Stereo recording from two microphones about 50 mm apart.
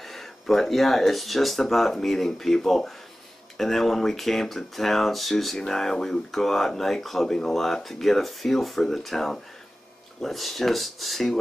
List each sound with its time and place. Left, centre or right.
0.0 s speech: centre